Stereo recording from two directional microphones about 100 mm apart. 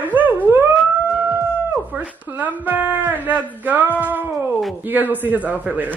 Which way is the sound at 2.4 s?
15° right (ahead or behind).